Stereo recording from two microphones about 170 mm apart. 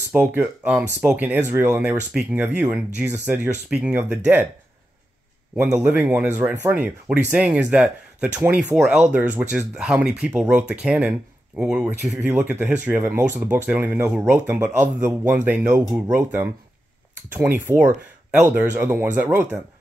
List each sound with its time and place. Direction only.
0.1 s speech: 10° right (ahead or behind)
5.6 s speech: 5° right (ahead or behind)